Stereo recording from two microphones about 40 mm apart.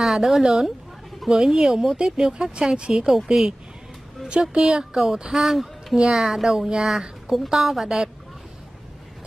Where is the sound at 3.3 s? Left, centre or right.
Centre.